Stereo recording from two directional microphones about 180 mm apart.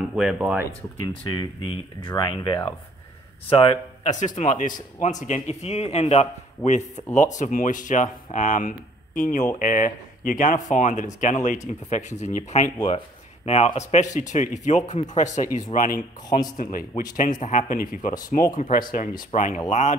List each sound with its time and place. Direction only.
0.1 s speech: 5° right (ahead or behind)
1.0 s a man's voice: 25° left (ahead or behind); by 12.7 s 45° left (ahead or behind)
12.7 s speech: 25° left (ahead or behind)
13.5 s a man's voice: 35° left (ahead or behind)